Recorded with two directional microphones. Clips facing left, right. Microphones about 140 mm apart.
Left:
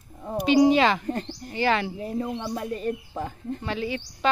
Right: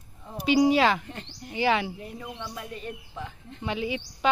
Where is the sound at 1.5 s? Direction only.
10° right (ahead or behind).